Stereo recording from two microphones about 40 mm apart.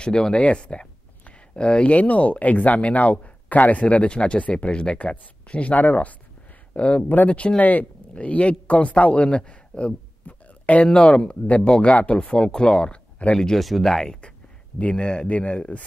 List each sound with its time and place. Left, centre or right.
0.0 s speech: left
10.2 s a sound: left
10.9 s speech: left
13.6 s speech: centre
13.8 s speech: centre
14.8 s speech: left
15.2 s speech: left